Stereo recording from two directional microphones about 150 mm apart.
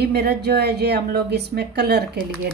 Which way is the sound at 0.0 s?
90° right.